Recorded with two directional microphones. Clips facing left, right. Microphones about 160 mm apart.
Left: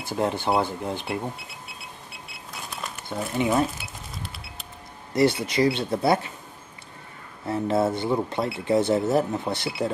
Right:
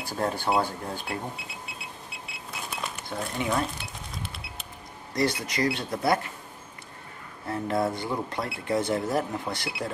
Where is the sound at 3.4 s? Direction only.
20° left (ahead or behind).